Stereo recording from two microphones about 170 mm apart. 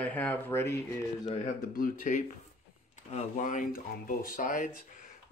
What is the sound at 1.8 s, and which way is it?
Speech, 50° left (ahead or behind).